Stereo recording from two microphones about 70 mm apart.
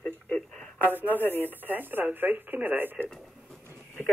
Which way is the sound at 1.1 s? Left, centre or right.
Left.